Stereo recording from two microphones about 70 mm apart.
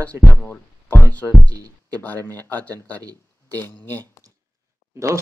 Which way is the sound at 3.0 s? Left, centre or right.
Right.